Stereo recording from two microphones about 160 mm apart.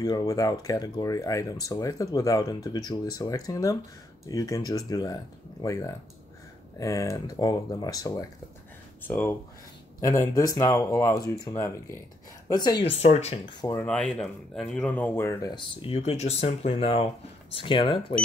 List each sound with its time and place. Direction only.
0.0 s speech: 25° left (ahead or behind)
9.0 s a woman's voice: 10° left (ahead or behind)
12.9 s speech: 40° left (ahead or behind)
13.5 s speech: 25° left (ahead or behind)
13.7 s speech: 5° left (ahead or behind)
15.5 s speech: 35° left (ahead or behind)